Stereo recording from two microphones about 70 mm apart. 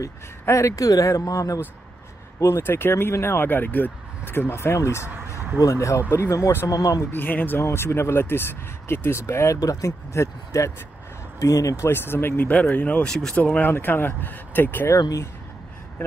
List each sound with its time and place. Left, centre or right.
0.0 s speech: left
2.4 s speech: left
6.7 s speech: left
7.1 s speech: left
9.6 s speech: left
11.9 s speech: left
13.1 s speech: centre
13.4 s speech: left
15.0 s speech: left